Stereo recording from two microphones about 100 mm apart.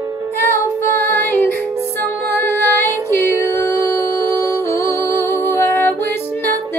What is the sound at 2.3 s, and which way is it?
Music, 20° left (ahead or behind).